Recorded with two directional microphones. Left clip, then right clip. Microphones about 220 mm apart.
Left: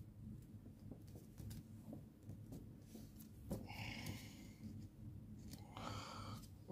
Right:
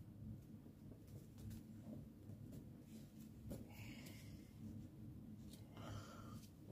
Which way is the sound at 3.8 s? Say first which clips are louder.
Left 8 dB; 45° left (ahead or behind).